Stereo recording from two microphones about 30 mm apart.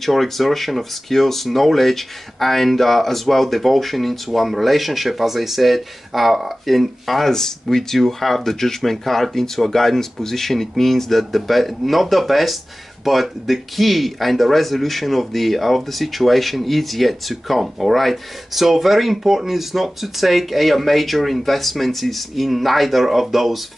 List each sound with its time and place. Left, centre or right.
0.0 s speech: centre
7.2 s speech: centre